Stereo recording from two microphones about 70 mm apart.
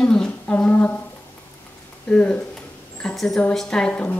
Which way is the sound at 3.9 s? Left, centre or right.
Left.